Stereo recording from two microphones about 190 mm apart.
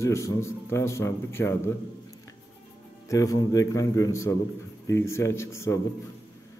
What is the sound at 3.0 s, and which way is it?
Speech, 15° left (ahead or behind).